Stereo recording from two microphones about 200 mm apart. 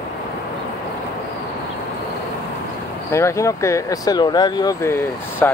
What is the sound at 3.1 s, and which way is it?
Speech, 15° left (ahead or behind).